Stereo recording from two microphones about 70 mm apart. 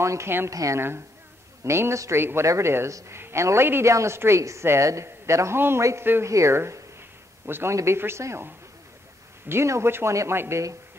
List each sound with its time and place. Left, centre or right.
0.0 s a woman's voice: right
9.5 s a man's voice: right